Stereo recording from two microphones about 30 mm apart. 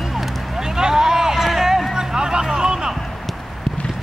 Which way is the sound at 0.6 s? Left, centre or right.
Right.